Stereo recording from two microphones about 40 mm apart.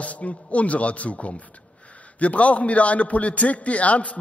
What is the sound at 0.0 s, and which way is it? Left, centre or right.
A man's voice, left.